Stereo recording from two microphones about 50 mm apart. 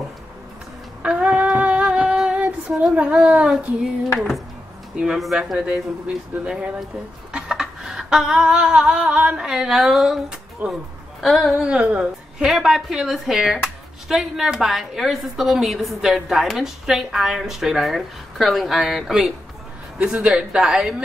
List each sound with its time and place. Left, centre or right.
1.0 s female singing: right
2.9 s speech: right
4.9 s speech: centre
5.7 s speech: right
7.3 s a sound: centre
9.4 s a woman's voice: centre
10.6 s speech: right
11.1 s a woman's voice: centre
11.6 s a woman's voice: right
12.4 s a woman's voice: centre
20.0 s a woman's voice: right